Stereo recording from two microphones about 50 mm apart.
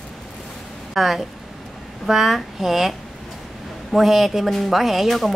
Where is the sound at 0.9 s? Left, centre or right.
Centre.